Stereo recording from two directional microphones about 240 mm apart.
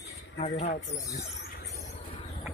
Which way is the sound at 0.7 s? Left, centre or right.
Left.